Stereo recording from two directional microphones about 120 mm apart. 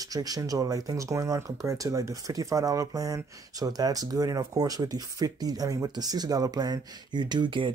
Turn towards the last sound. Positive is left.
turn(degrees=-40)  # may be behind; listen again after turning